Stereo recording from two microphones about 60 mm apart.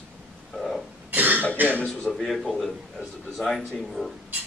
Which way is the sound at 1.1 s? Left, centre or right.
Right.